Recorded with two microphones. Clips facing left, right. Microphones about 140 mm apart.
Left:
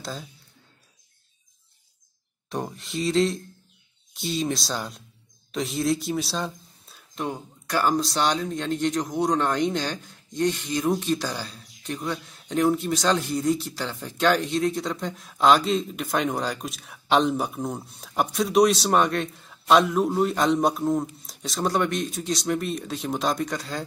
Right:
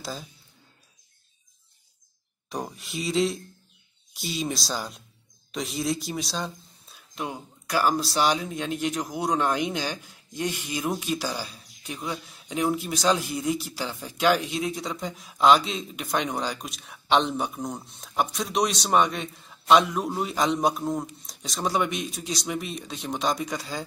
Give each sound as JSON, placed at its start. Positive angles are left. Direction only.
{"t": 0.0, "sound": "speech", "side_deg": 0}
{"t": 2.5, "sound": "speech", "side_deg": 0}